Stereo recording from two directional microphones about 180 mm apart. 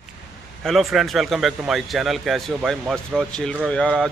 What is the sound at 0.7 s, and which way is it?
A man's voice, centre (ahead or behind).